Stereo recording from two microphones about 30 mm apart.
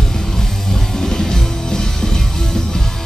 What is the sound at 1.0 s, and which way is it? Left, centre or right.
Music, centre.